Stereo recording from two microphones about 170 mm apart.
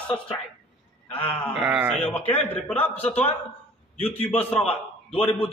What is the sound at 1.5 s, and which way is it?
Speech, 5° right (ahead or behind).